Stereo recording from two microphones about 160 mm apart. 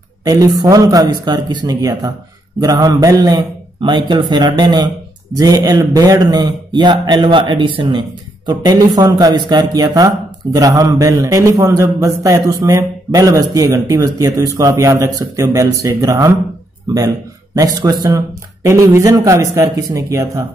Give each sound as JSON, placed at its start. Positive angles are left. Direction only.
{"t": 0.2, "sound": "a man's voice", "side_deg": -20}
{"t": 17.6, "sound": "a man's voice", "side_deg": -20}